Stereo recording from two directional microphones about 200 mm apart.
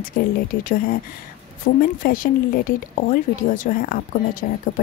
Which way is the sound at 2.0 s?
45° left (ahead or behind).